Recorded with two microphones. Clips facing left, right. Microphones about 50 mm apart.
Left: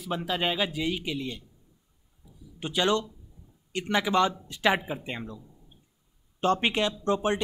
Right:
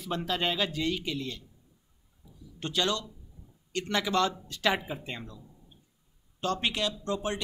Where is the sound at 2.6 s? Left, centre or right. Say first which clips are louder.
Left 4 dB; centre.